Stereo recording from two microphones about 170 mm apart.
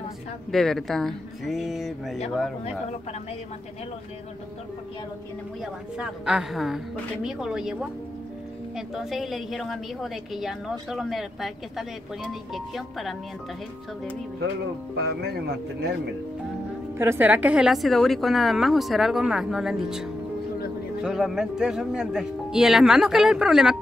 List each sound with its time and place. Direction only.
0.5 s a woman's voice: 5° left (ahead or behind)
5.6 s a woman's voice: 5° right (ahead or behind)
8.7 s a woman's voice: centre (ahead or behind)
15.0 s speech: 70° right (ahead or behind)
17.0 s a woman's voice: 10° right (ahead or behind)